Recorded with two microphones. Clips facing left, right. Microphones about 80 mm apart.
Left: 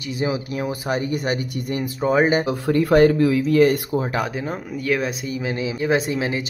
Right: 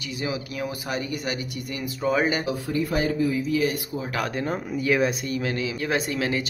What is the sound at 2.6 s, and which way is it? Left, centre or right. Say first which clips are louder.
Speech: left 14 dB; left.